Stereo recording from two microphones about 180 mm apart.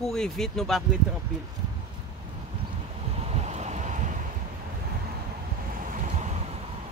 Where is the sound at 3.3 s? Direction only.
40° right (ahead or behind).